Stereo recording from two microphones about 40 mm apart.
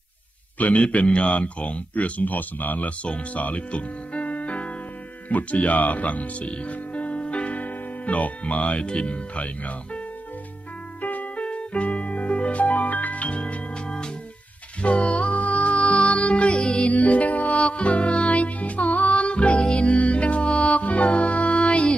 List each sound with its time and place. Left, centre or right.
0.6 s a man's voice: left
1.0 s speech: left
11.0 s music: left
11.4 s music: left
14.8 s music: left
16.9 s music: left